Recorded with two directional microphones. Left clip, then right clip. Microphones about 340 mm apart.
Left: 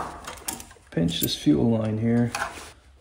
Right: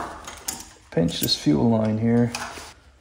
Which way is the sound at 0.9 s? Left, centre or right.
Centre.